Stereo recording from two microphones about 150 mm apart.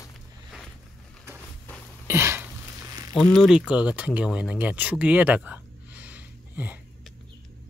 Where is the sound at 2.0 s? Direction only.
15° right (ahead or behind).